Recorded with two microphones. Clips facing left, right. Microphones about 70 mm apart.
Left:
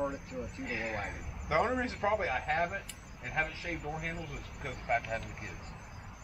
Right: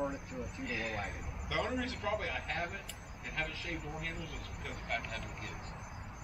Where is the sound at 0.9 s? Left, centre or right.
Left.